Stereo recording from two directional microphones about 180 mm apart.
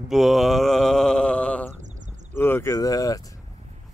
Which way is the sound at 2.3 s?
15° left (ahead or behind).